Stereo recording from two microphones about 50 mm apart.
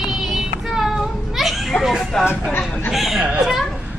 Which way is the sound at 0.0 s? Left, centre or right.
Centre.